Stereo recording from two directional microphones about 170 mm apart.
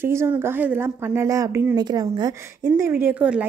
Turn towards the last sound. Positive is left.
turn(degrees=-5)  # may be behind; listen again after turning